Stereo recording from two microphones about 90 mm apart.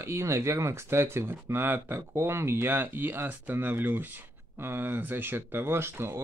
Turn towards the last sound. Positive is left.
turn(degrees=-30)  # may be behind; listen again after turning